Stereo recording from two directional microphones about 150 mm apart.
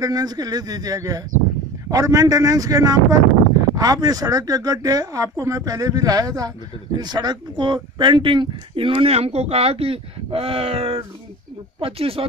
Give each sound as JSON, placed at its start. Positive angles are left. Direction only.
{"t": 0.0, "sound": "speech", "side_deg": -25}